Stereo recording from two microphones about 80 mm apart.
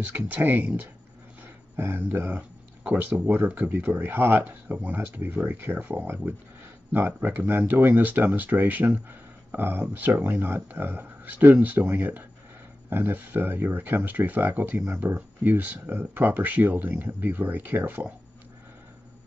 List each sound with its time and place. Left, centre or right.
0.0 s speech: centre